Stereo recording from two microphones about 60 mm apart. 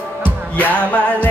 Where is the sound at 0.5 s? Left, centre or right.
Left.